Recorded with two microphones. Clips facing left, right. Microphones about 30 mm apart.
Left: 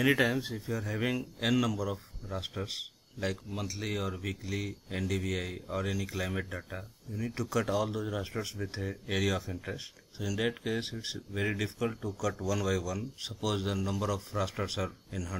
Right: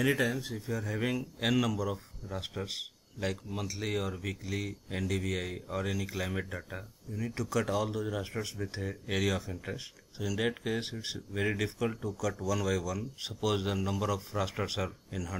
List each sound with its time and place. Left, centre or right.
0.0 s speech: centre
0.6 s speech: centre